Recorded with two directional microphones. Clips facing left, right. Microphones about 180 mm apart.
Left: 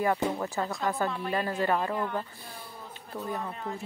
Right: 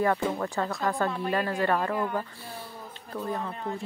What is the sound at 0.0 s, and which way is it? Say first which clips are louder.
Speech: right 1 dB; 15° left (ahead or behind).